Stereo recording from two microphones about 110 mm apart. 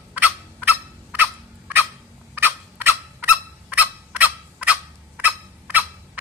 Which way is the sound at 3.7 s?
15° right (ahead or behind).